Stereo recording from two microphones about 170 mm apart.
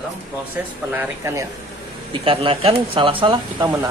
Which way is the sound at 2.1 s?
30° right (ahead or behind).